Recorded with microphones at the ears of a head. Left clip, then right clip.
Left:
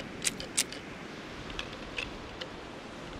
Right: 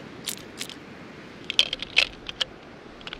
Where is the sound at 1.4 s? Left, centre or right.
Right.